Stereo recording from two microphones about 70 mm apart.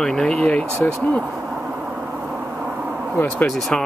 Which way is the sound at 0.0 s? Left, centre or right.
Centre.